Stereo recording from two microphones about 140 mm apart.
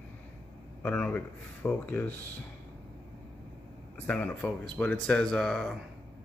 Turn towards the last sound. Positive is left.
turn(degrees=5)  # may be behind; listen again after turning